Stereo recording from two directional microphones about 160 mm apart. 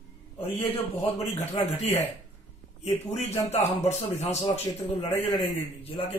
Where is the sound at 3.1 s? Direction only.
45° left (ahead or behind).